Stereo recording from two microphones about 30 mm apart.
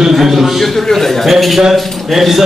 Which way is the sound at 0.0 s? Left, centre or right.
Centre.